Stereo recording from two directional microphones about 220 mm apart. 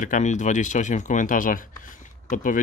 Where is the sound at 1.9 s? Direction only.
35° left (ahead or behind).